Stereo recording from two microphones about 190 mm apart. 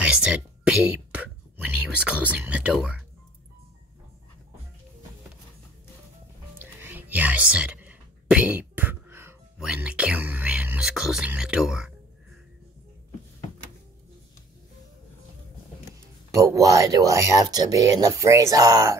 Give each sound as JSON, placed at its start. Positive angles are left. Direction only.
{"t": 0.0, "sound": "whispering", "side_deg": -5}
{"t": 6.6, "sound": "whispering", "side_deg": -10}
{"t": 16.3, "sound": "speech", "side_deg": -15}